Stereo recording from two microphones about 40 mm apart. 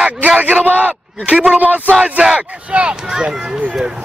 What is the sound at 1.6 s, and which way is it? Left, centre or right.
Speech, right.